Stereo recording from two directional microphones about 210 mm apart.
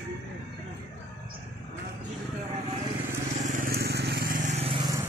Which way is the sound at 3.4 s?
40° right (ahead or behind).